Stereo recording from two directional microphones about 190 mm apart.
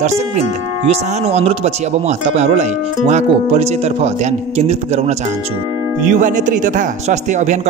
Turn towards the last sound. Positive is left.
turn(degrees=-40)  # may be behind; listen again after turning